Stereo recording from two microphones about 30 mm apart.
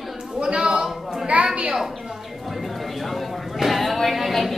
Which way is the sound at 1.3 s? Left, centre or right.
Right.